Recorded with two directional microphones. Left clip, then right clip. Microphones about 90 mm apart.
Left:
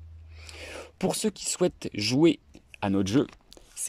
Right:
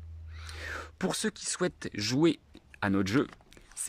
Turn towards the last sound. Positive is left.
turn(degrees=15)  # may be behind; listen again after turning